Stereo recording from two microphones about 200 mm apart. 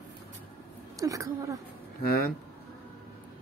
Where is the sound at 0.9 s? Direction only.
15° right (ahead or behind).